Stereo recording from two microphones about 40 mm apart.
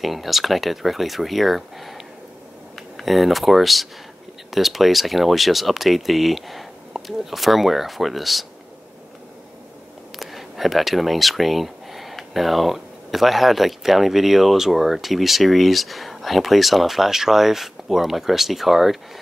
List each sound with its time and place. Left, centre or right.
0.0 s speech: centre
3.0 s speech: centre
10.1 s speech: centre